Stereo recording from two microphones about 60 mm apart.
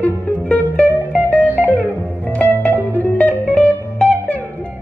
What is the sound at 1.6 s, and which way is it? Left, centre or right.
Music, left.